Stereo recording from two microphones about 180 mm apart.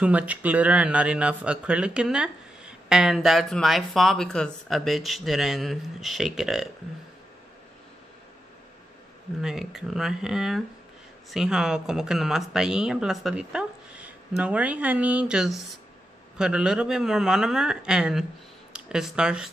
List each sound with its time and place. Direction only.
0.0 s speech: 5° right (ahead or behind)
9.4 s speech: centre (ahead or behind)